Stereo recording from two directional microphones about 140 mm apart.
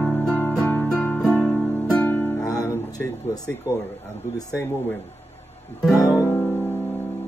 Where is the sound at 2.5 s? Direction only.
25° left (ahead or behind).